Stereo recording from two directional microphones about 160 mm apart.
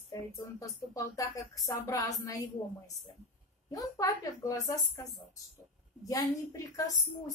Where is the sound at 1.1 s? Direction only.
20° left (ahead or behind).